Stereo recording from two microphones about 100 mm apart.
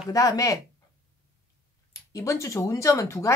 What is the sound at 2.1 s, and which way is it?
Speech, 30° left (ahead or behind).